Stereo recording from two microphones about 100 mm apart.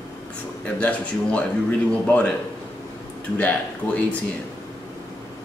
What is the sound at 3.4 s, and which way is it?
Speech, 15° left (ahead or behind).